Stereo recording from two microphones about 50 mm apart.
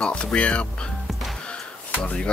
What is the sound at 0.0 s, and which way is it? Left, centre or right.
Speech, centre.